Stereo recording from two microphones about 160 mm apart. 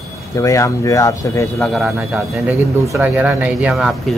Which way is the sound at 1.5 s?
Centre (ahead or behind).